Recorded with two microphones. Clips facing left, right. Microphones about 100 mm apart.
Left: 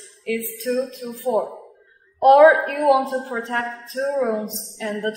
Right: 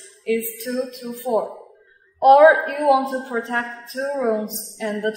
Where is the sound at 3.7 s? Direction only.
30° left (ahead or behind).